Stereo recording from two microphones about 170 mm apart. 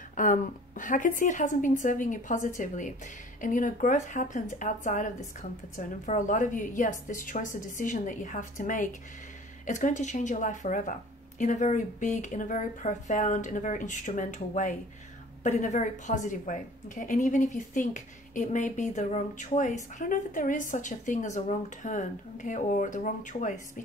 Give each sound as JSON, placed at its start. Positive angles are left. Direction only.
{"t": 0.1, "sound": "a woman's voice", "side_deg": 50}